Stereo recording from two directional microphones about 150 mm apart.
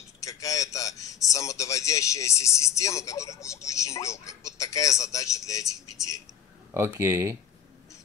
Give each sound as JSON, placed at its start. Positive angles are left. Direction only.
{"t": 0.2, "sound": "a man's voice", "side_deg": 20}
{"t": 6.7, "sound": "speech", "side_deg": -20}